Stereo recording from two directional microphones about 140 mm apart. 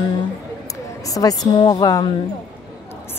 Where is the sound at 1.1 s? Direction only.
25° left (ahead or behind).